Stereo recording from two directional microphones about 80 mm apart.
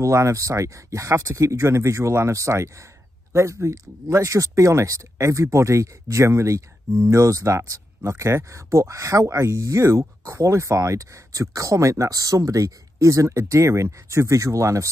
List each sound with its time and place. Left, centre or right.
0.0 s speech: right